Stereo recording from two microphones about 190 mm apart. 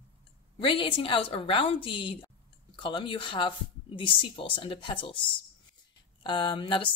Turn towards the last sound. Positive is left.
turn(degrees=25)  # may be behind; listen again after turning